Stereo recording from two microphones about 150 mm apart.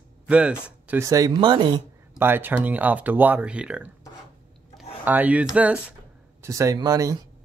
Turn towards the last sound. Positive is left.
turn(degrees=-25)  # may be behind; listen again after turning